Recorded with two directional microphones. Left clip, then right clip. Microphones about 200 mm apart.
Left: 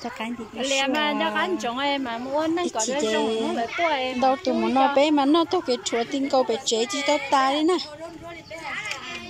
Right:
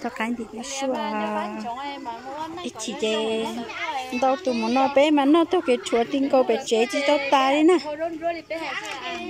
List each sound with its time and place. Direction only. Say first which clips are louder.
0.7 s speech: left 4 dB; 40° left (ahead or behind)
4.2 s a woman's voice: right 2 dB; centre (ahead or behind)